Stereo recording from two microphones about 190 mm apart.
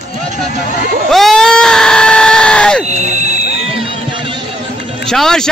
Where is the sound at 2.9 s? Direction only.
35° right (ahead or behind).